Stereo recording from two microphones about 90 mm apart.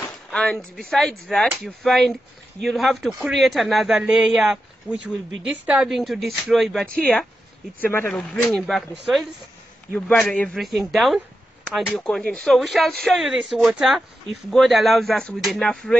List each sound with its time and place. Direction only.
0.3 s a woman's voice: 10° left (ahead or behind); by 5.9 s 10° right (ahead or behind)
5.9 s speech: centre (ahead or behind)
7.8 s speech: 25° left (ahead or behind)
8.1 s speech: 10° left (ahead or behind)
9.9 s a man's voice: 5° left (ahead or behind)
10.5 s speech: centre (ahead or behind)
11.8 s a man's voice: 15° left (ahead or behind)